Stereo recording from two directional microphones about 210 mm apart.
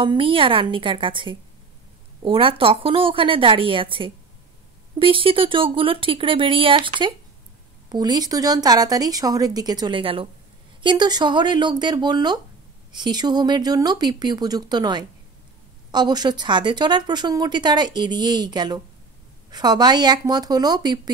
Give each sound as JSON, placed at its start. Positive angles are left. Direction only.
{"t": 0.0, "sound": "speech", "side_deg": -25}